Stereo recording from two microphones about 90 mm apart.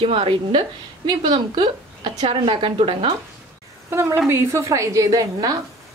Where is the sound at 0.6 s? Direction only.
55° right (ahead or behind); by 3.2 s 85° right.